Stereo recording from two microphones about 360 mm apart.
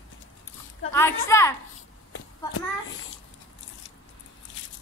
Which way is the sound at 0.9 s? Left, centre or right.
Centre.